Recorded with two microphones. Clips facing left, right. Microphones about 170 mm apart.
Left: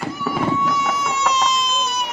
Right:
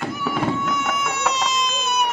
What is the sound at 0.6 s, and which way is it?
Baby cry, 60° right (ahead or behind).